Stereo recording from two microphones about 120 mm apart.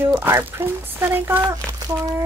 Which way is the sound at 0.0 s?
20° right (ahead or behind).